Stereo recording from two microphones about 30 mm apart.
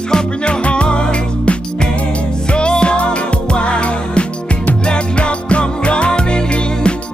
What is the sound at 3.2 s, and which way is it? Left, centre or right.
Music, left.